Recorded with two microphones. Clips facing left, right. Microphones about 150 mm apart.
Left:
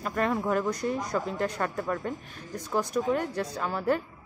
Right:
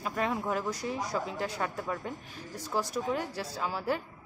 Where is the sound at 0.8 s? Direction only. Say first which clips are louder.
Left 4 dB; 55° left (ahead or behind).